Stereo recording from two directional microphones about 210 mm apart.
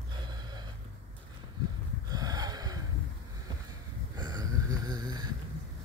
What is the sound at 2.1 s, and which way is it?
Snort, 20° right (ahead or behind).